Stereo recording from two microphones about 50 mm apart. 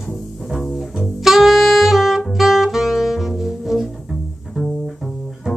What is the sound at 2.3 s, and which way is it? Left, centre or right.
Brass instrument, centre.